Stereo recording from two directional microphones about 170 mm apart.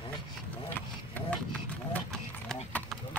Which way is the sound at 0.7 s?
10° left (ahead or behind).